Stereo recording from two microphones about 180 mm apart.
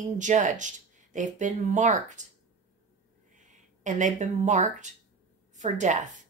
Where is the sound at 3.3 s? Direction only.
45° right (ahead or behind).